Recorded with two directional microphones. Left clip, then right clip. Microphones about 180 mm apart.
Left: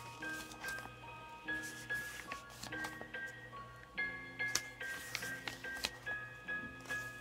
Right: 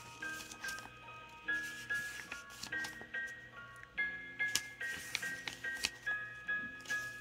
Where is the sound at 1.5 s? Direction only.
30° left (ahead or behind).